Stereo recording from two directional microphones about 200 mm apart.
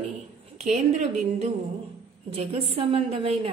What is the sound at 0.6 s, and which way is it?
A woman's voice, 35° right (ahead or behind).